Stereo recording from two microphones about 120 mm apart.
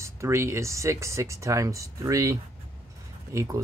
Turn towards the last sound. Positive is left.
turn(degrees=-30)  # may be behind; listen again after turning